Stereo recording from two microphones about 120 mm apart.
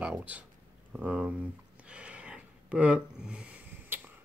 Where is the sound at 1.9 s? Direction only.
10° right (ahead or behind).